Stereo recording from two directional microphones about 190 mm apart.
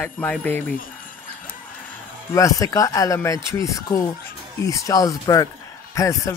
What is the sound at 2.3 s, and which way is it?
Speech, 15° left (ahead or behind).